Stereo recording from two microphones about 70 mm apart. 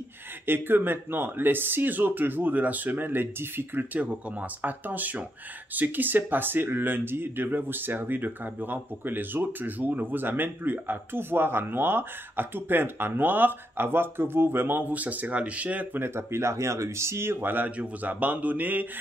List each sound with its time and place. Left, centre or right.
0.5 s speech: right